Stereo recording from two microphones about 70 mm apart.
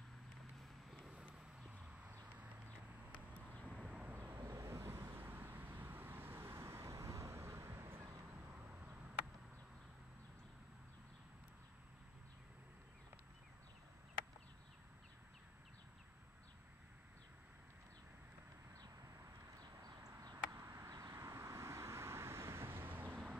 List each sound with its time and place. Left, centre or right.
0.8 s a sound: centre
3.1 s vehicle: centre
3.8 s vehicle: centre
4.1 s vehicle: right
4.4 s vehicle: right
6.9 s vehicle: right
19.8 s a sound: right
21.1 s vehicle: right